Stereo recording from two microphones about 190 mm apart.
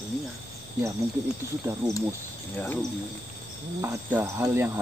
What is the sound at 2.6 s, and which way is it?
Speech, 10° left (ahead or behind).